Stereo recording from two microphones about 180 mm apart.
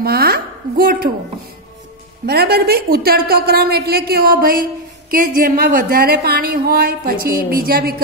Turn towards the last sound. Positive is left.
turn(degrees=-55)  # may be behind; listen again after turning